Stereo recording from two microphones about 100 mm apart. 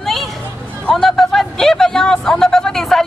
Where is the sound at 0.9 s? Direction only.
5° left (ahead or behind).